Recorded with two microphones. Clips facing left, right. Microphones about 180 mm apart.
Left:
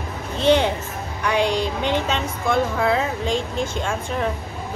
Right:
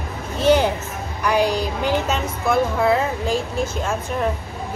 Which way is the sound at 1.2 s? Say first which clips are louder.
Right 1 dB; 5° right (ahead or behind).